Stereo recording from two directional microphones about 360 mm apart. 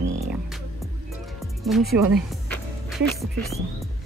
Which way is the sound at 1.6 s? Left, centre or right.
Centre.